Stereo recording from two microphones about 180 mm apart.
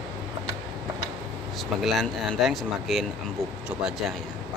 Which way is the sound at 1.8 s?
Centre (ahead or behind).